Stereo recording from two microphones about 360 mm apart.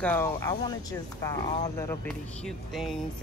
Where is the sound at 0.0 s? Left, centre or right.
Centre.